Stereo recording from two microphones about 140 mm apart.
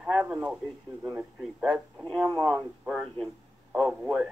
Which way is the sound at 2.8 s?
5° right (ahead or behind).